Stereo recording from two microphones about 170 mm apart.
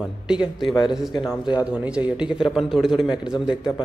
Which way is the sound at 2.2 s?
30° left (ahead or behind).